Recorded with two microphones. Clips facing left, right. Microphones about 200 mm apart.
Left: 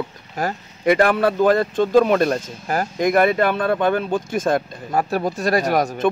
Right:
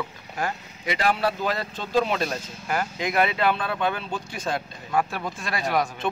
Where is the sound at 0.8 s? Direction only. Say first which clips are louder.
Left 8 dB; 55° left (ahead or behind).